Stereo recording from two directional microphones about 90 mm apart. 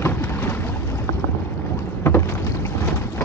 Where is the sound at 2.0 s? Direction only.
25° left (ahead or behind).